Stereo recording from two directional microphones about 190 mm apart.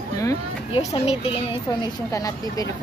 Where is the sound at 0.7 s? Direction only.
30° left (ahead or behind).